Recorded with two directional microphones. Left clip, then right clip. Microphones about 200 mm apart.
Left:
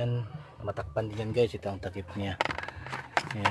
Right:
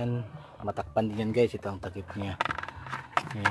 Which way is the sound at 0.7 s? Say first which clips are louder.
Right 3 dB; 25° right (ahead or behind).